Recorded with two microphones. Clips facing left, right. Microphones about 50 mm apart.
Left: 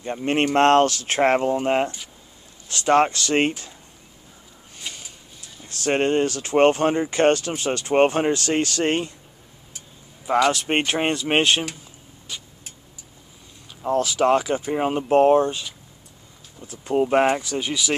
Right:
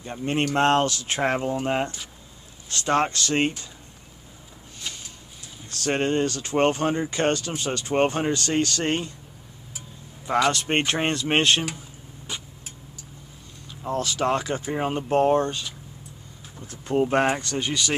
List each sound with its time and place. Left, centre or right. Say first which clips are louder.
0.0 s speech: left 4 dB; left
1.4 s speech: left 4 dB; left
4.9 s a sound: left 1 dB; centre
5.9 s speech: left 3 dB; centre
6.2 s speech: left 5 dB; left
10.2 s speech: left 3 dB; centre
12.3 s vehicle: right 1 dB; right
14.0 s speech: left 4 dB; centre